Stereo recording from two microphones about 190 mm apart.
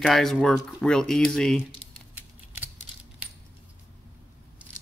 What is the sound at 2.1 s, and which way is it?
Scissors, 10° right (ahead or behind).